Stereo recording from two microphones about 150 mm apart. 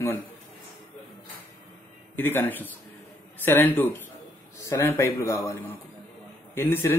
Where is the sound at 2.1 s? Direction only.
15° left (ahead or behind).